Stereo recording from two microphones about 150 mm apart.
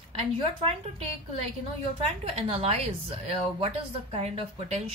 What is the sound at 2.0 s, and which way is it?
A woman's voice, 40° right (ahead or behind).